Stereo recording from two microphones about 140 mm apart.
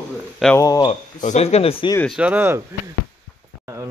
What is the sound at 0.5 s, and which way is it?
Speech, 25° left (ahead or behind).